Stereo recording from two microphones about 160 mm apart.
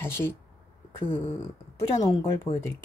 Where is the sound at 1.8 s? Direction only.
20° left (ahead or behind).